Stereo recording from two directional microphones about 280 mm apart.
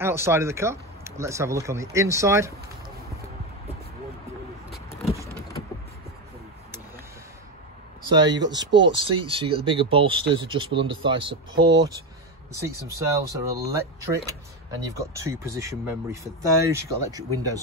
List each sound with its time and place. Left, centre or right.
0.0 s speech: centre
5.1 s mechanisms: centre
8.3 s speech: right
9.0 s speech: centre